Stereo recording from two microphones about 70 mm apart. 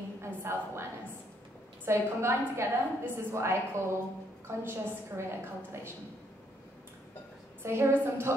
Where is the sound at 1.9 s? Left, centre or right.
Right.